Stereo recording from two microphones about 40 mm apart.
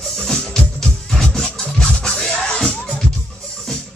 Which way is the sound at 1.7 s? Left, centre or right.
Left.